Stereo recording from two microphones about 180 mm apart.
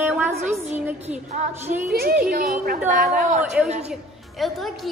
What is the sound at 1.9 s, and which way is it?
A woman's voice, 60° right (ahead or behind).